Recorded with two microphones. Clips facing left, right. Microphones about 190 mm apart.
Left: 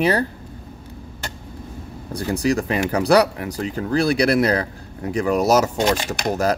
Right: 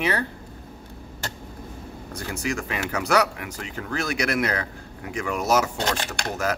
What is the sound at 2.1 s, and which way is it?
Speech, 35° left (ahead or behind).